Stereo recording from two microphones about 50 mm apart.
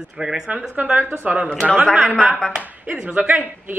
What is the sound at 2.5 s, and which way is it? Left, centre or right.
Speech, right.